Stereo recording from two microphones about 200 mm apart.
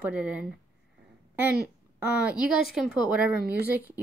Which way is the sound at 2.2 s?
5° right (ahead or behind).